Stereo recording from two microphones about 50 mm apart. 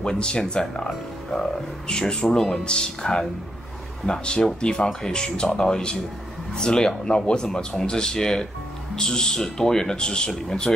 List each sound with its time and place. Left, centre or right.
0.0 s speech: centre